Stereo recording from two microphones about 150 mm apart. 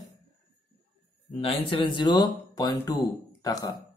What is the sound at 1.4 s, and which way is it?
Speech, 35° left (ahead or behind).